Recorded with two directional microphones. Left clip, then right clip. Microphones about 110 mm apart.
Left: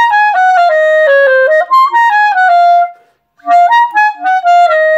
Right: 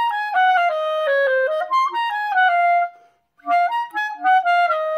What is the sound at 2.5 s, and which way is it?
Music, 5° left (ahead or behind).